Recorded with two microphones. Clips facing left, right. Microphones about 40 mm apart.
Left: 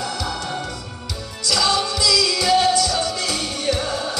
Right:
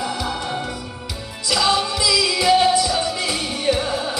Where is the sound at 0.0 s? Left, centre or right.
Centre.